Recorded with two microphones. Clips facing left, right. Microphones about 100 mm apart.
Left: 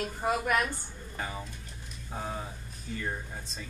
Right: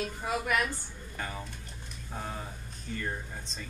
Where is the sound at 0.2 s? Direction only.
40° left (ahead or behind).